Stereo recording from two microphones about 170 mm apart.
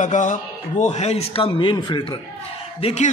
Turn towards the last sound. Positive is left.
turn(degrees=40)  # may be behind; listen again after turning